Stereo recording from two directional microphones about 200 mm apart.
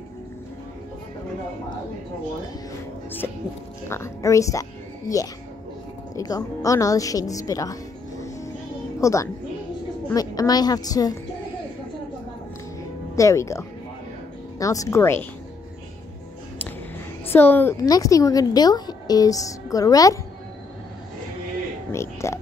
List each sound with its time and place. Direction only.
3.9 s a woman's voice: 15° left (ahead or behind)
9.0 s a woman's voice: 15° left (ahead or behind)
13.1 s a woman's voice: 15° left (ahead or behind)
17.3 s a woman's voice: 10° left (ahead or behind)
21.9 s a sound: 15° left (ahead or behind)